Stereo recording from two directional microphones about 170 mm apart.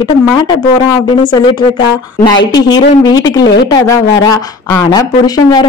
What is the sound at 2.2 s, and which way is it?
Speech, 25° left (ahead or behind).